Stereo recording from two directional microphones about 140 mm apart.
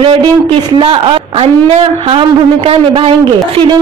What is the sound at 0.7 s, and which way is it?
A man's voice, 35° right (ahead or behind).